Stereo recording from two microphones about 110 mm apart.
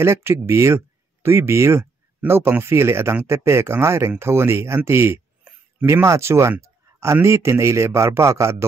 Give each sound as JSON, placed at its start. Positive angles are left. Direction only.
{"t": 0.0, "sound": "a man's voice", "side_deg": -25}